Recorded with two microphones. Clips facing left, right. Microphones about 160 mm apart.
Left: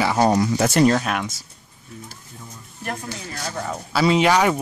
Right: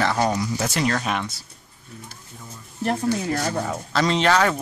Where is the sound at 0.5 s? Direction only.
50° left (ahead or behind).